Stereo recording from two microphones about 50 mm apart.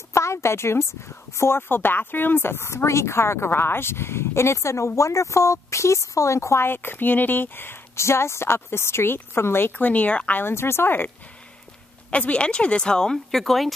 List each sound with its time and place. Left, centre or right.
0.1 s a woman's voice: left
1.4 s speech: left
6.6 s speech: left
8.0 s speech: left
9.7 s speech: left
10.4 s speech: left
12.1 s speech: left; by 13.7 s centre